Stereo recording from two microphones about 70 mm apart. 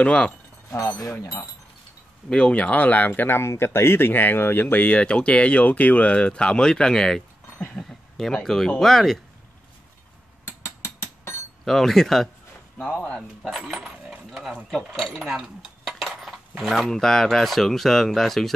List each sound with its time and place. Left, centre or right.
0.0 s speech: centre
0.7 s speech: left
2.2 s speech: centre
11.0 s a sound: left
11.6 s speech: centre
13.7 s speech: centre
15.3 s cutlery: centre